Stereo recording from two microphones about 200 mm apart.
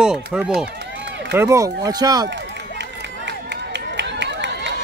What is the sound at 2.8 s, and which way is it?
Run, 60° right (ahead or behind).